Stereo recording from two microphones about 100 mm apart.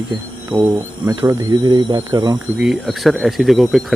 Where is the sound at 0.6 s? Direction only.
25° right (ahead or behind).